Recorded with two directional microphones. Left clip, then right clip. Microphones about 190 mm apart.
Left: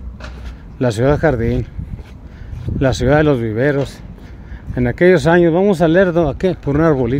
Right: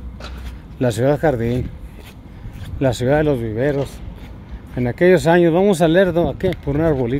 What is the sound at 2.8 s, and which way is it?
Speech, 15° left (ahead or behind).